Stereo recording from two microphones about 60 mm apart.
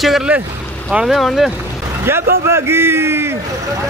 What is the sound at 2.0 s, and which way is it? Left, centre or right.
A man's voice, right.